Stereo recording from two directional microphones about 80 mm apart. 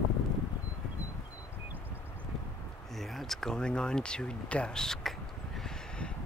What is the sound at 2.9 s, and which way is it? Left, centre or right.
Speech, centre.